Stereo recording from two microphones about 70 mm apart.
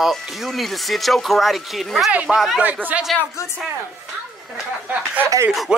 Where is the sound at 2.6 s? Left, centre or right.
Right.